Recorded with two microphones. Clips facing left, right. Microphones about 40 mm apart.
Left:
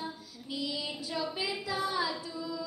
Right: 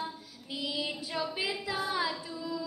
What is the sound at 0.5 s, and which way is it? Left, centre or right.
Female singing, centre.